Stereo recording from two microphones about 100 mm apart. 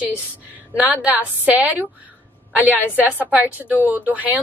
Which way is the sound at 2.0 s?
15° right (ahead or behind).